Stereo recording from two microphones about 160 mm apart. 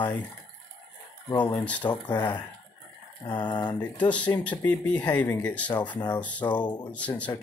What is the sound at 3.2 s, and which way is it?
Speech, 30° left (ahead or behind).